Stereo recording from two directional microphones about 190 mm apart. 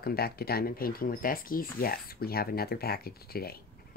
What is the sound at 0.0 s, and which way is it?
Speech, 55° left (ahead or behind).